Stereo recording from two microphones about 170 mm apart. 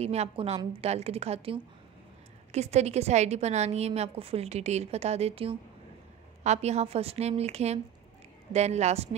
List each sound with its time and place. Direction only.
0.0 s a woman's voice: 40° right (ahead or behind)